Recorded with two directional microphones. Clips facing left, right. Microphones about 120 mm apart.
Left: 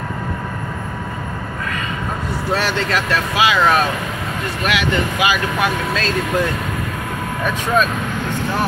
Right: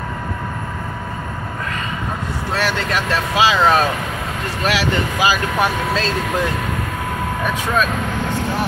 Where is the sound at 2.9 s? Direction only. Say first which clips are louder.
Even; 25° right (ahead or behind).